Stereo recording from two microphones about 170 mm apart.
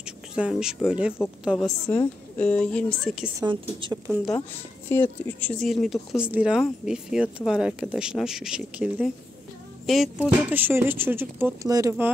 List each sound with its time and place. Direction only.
0.0 s a sound: 5° right (ahead or behind)
0.8 s speech: 5° right (ahead or behind)
2.3 s speech: 10° left (ahead or behind)
3.3 s a woman's voice: 25° right (ahead or behind)
4.8 s speech: 10° left (ahead or behind); by 12.1 s 15° right (ahead or behind)